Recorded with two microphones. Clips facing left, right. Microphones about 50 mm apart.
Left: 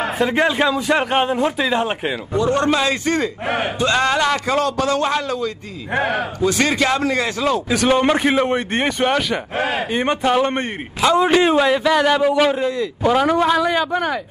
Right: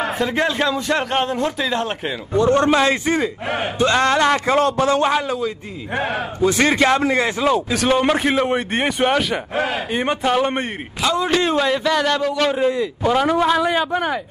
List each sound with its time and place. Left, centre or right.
0.0 s a man's voice: centre
2.5 s a man's voice: right
3.4 s a man's voice: centre
3.7 s a man's voice: right
5.1 s speech: centre
6.4 s a man's voice: right
7.7 s a man's voice: centre
9.6 s a man's voice: left
9.8 s a man's voice: centre
11.0 s a man's voice: left
11.3 s a man's voice: centre
12.6 s speech: centre
13.0 s a man's voice: centre